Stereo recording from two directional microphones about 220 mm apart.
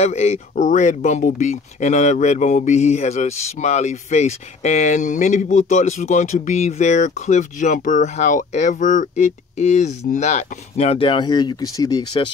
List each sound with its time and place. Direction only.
0.0 s speech: 30° left (ahead or behind)